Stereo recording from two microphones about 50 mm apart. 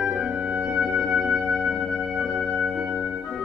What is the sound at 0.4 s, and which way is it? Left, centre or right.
Music, right.